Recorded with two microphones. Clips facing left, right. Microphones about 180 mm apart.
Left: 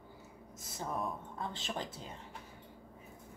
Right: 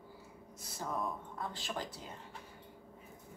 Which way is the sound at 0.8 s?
25° left (ahead or behind).